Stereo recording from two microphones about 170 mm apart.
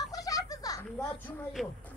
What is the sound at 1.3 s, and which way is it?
Speech, 15° left (ahead or behind).